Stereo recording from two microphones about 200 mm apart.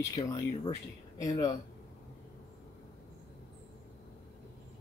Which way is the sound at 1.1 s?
15° left (ahead or behind).